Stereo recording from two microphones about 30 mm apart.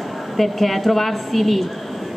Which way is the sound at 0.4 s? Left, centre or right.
Centre.